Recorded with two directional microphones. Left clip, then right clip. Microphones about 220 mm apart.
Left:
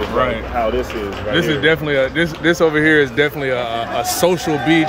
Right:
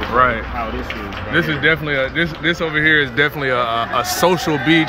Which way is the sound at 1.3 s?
15° left (ahead or behind).